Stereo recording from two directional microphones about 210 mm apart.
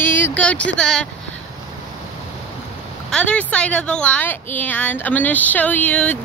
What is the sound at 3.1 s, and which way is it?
Speech, 5° left (ahead or behind).